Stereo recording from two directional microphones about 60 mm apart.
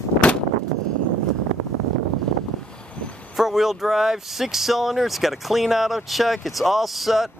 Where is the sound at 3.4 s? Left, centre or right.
Centre.